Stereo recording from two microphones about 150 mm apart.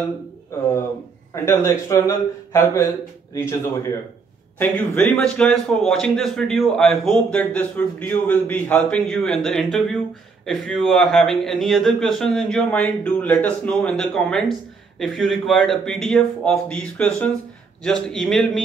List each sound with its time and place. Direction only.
1.3 s a man's voice: 20° left (ahead or behind); by 18.6 s centre (ahead or behind)